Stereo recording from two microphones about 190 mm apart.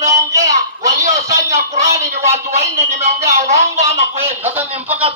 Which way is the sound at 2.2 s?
35° right (ahead or behind).